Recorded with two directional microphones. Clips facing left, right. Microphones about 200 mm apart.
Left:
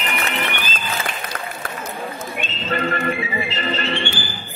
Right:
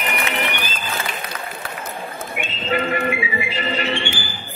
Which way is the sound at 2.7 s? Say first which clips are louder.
Right 1 dB; 10° right (ahead or behind).